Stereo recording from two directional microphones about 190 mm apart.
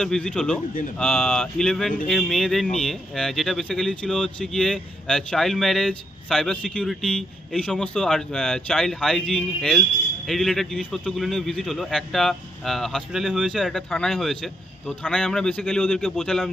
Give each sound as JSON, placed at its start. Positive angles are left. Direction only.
{"t": 0.0, "sound": "speech", "side_deg": 5}